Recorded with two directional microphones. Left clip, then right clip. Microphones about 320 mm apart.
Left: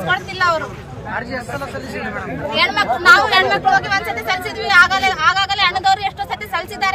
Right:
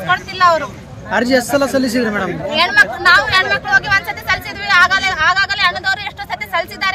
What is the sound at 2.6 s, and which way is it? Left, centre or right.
Speech, centre.